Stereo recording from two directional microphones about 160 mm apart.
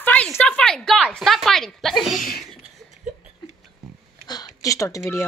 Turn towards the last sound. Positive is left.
turn(degrees=15)  # may be behind; listen again after turning